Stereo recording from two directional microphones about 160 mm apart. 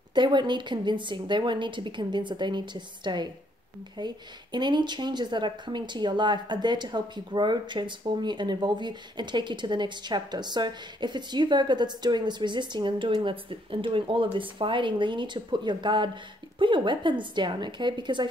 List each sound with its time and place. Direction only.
0.1 s a woman's voice: 30° right (ahead or behind)